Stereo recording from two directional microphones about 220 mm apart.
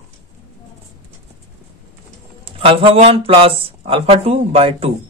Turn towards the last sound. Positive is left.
turn(degrees=-25)  # may be behind; listen again after turning